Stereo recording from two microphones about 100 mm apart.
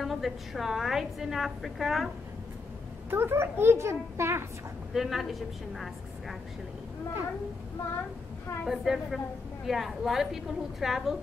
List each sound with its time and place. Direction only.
0.0 s a woman's voice: centre (ahead or behind)
3.1 s a child's voice: 25° right (ahead or behind)
4.9 s a woman's voice: centre (ahead or behind)
8.6 s a woman's voice: centre (ahead or behind)